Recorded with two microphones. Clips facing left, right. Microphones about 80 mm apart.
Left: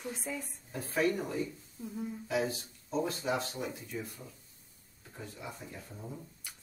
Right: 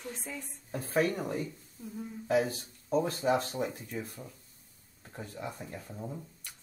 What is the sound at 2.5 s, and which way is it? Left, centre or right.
Speech, right.